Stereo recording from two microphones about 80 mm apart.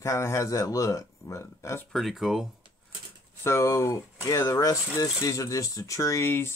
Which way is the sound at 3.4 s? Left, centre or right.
Left.